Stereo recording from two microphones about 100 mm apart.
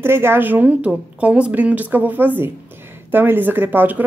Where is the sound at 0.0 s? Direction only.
25° right (ahead or behind).